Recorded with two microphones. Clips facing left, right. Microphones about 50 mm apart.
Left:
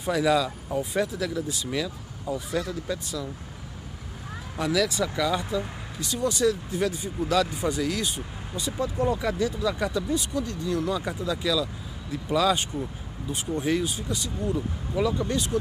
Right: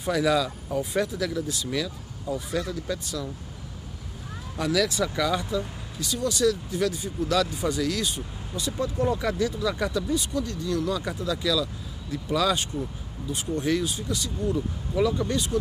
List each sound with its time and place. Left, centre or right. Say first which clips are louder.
0.0 s speech: even; centre
4.6 s speech: even; centre
4.8 s speech: even; centre
5.5 s speech: even; centre
10.9 s speech: even; centre